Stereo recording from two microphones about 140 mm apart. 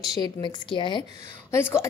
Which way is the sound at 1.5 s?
20° left (ahead or behind).